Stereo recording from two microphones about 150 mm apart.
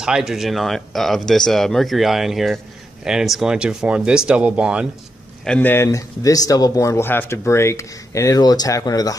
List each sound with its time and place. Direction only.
0.0 s speech: 5° right (ahead or behind)
5.4 s speech: 10° left (ahead or behind); by 9.1 s 25° left (ahead or behind)